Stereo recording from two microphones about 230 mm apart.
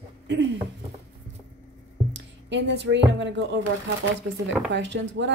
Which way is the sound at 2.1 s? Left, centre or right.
Right.